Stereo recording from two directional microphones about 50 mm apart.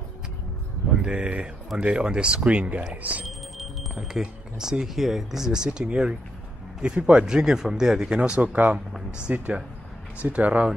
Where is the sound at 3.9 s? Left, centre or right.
Centre; by 10.6 s right.